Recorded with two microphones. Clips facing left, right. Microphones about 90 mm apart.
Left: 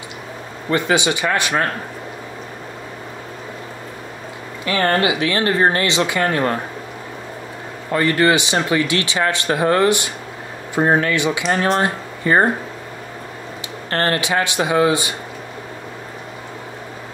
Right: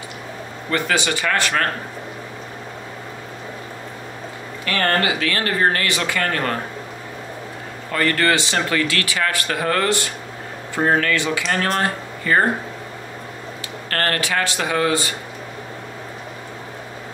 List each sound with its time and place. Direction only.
0.7 s speech: 20° left (ahead or behind)
4.6 s speech: 20° left (ahead or behind)
7.9 s speech: 20° left (ahead or behind)
13.8 s speech: 25° left (ahead or behind)